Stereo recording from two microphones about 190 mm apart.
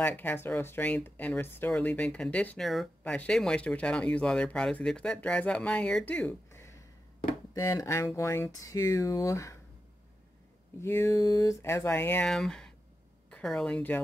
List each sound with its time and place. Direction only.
0.0 s speech: 10° left (ahead or behind)
10.8 s a woman's voice: 15° left (ahead or behind)